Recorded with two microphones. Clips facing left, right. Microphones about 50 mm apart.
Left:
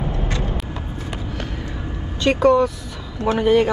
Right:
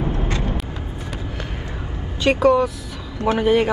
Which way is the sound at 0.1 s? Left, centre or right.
Right.